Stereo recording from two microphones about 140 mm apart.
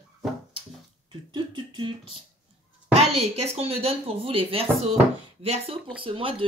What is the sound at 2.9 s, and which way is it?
A woman's voice, 50° right (ahead or behind).